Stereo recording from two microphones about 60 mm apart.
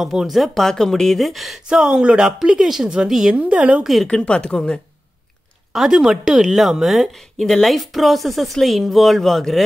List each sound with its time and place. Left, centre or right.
0.0 s a woman's voice: centre
1.7 s a woman's voice: centre
3.3 s a woman's voice: right
3.8 s a woman's voice: centre
4.1 s a woman's voice: centre
5.7 s a woman's voice: centre